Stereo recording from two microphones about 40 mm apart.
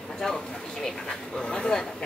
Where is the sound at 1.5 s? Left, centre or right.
Left.